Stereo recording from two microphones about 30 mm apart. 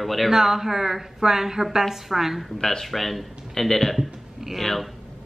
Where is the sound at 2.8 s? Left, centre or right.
Centre.